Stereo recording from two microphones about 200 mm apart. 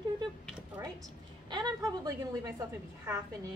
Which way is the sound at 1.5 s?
20° right (ahead or behind).